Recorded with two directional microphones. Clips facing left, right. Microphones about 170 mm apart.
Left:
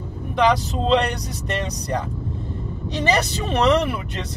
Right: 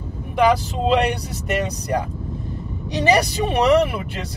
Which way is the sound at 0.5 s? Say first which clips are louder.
Left 1 dB; 10° right (ahead or behind).